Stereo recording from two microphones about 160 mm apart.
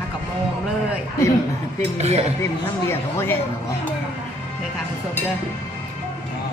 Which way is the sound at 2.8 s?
15° left (ahead or behind).